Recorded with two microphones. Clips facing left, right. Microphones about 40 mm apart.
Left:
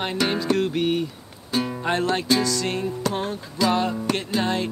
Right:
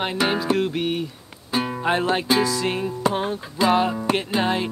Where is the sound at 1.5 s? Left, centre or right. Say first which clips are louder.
Right 2 dB; centre.